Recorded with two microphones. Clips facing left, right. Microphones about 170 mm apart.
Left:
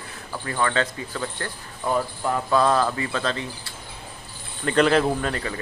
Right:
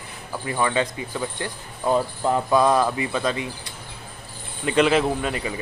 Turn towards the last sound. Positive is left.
turn(degrees=-10)  # may be behind; listen again after turning